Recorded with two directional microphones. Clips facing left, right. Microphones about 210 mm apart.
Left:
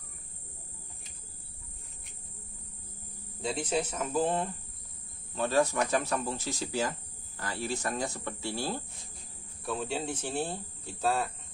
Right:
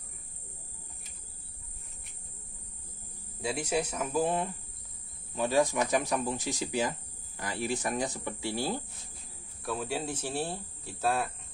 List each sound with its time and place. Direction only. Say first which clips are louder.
3.3 s speech: even; 10° right (ahead or behind)
9.6 s speech: even; 5° right (ahead or behind)